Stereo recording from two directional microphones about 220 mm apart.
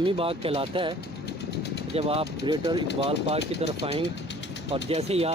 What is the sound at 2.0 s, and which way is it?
Speech, 25° right (ahead or behind).